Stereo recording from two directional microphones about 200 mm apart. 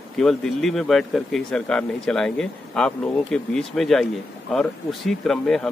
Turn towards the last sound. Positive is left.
turn(degrees=5)  # may be behind; listen again after turning